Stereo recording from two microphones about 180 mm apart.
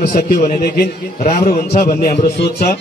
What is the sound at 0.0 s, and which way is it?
A man's voice, 50° left (ahead or behind).